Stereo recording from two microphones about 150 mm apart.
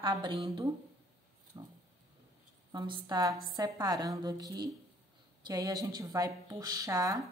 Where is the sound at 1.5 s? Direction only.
35° right (ahead or behind).